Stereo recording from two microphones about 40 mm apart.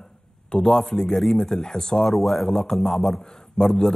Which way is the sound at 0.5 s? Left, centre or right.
Centre.